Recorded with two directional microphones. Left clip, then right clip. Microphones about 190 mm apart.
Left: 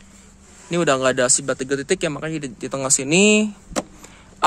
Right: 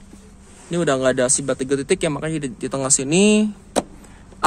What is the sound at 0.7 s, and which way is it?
Speech, 30° left (ahead or behind).